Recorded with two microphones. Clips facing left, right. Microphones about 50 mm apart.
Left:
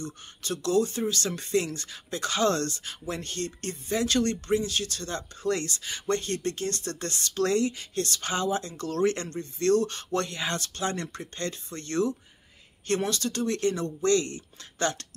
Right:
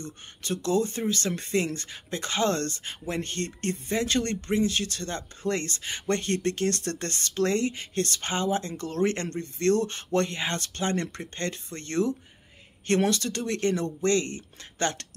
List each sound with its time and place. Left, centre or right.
0.0 s speech: right